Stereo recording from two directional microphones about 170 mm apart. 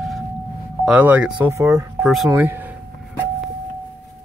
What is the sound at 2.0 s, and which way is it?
Speech, centre (ahead or behind).